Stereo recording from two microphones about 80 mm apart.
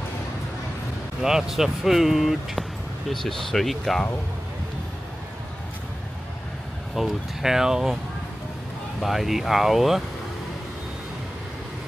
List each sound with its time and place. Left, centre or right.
1.2 s speech: centre
7.0 s speech: centre
9.0 s speech: centre